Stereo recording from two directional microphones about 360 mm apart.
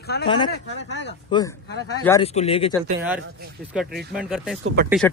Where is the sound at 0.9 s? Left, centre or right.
Left.